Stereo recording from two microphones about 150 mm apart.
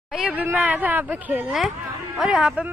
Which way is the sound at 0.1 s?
5° right (ahead or behind).